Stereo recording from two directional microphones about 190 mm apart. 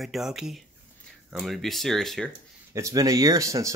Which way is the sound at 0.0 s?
Centre (ahead or behind).